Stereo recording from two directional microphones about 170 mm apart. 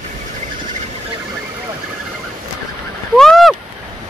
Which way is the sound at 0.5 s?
50° right (ahead or behind).